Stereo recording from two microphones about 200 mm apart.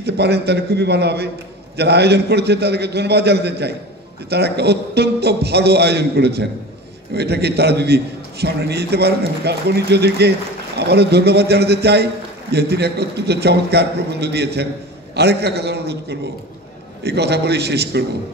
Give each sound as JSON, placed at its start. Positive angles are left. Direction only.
{"t": 0.0, "sound": "a man's voice", "side_deg": -55}